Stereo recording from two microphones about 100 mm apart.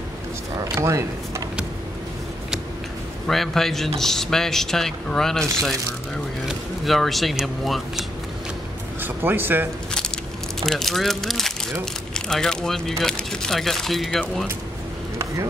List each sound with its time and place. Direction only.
0.6 s speech: 30° right (ahead or behind)
3.3 s speech: 5° left (ahead or behind)
6.8 s speech: centre (ahead or behind)
9.0 s speech: 20° right (ahead or behind)
9.8 s a sound: 5° left (ahead or behind)
11.8 s speech: 5° left (ahead or behind)